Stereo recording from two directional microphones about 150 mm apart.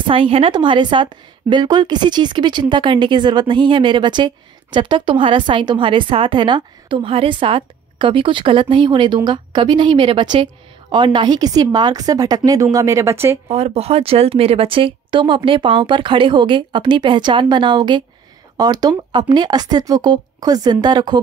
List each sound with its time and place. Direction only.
0.0 s a woman's voice: 35° right (ahead or behind); by 13.4 s 15° right (ahead or behind)
13.5 s a woman's voice: 45° right (ahead or behind)